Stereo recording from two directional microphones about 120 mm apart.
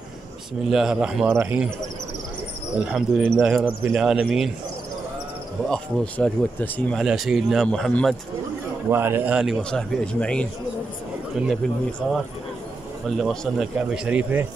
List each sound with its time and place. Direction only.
0.7 s a man's voice: 5° right (ahead or behind)
2.8 s a man's voice: 10° right (ahead or behind)
5.7 s speech: 10° left (ahead or behind)
7.1 s speech: 5° right (ahead or behind)
8.9 s a man's voice: 20° right (ahead or behind)
9.6 s speech: 5° left (ahead or behind)
11.4 s speech: 5° right (ahead or behind)